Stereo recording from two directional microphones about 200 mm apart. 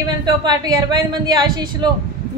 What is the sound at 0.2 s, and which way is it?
A woman's voice, 20° right (ahead or behind).